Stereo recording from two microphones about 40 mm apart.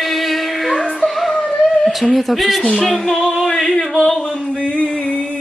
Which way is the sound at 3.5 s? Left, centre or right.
Centre.